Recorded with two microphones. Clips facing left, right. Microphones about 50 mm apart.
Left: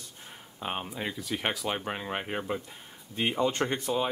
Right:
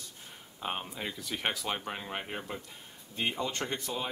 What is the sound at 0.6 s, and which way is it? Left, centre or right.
Speech, centre.